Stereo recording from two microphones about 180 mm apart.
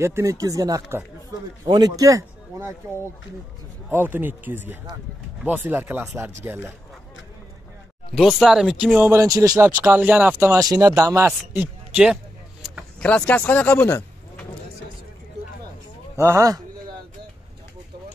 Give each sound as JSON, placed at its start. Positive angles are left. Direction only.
{"t": 0.0, "sound": "a man's voice", "side_deg": -15}
{"t": 3.9, "sound": "speech", "side_deg": -10}
{"t": 8.1, "sound": "speech", "side_deg": 0}
{"t": 9.7, "sound": "speech", "side_deg": -10}
{"t": 11.9, "sound": "speech", "side_deg": -5}
{"t": 16.2, "sound": "speech", "side_deg": -15}